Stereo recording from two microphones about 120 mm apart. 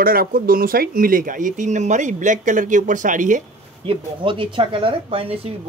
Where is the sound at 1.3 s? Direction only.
90° right.